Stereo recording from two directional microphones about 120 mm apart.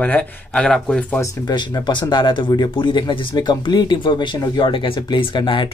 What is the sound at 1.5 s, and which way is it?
Speech, 40° left (ahead or behind).